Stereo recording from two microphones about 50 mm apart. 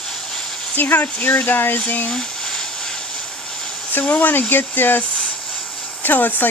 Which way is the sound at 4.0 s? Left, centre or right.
Left.